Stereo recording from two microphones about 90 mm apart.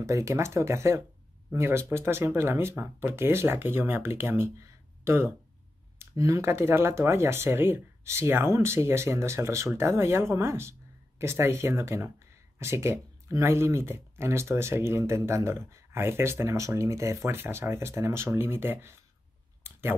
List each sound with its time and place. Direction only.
0.0 s speech: 35° right (ahead or behind)